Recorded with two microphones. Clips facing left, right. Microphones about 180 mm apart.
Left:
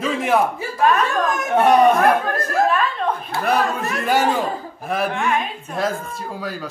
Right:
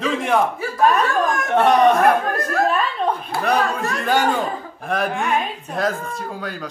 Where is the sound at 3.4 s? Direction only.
5° left (ahead or behind).